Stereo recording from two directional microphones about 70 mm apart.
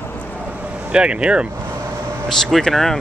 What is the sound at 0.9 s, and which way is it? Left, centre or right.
Speech, centre.